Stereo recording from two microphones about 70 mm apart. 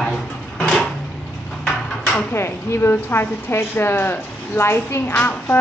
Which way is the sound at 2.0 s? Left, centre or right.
Left.